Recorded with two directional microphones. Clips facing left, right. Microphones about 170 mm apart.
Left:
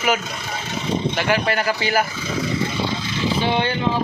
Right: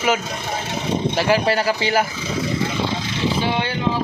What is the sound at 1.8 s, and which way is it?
Speech, 25° right (ahead or behind).